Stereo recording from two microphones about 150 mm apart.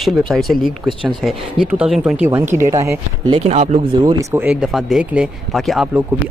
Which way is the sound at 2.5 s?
20° right (ahead or behind).